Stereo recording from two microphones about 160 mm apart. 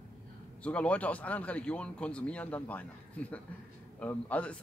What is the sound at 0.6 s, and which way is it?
Speech, 10° left (ahead or behind).